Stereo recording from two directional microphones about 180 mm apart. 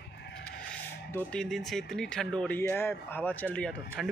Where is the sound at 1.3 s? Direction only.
5° left (ahead or behind).